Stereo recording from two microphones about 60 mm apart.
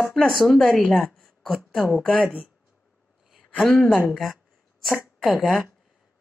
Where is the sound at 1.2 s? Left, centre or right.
Centre.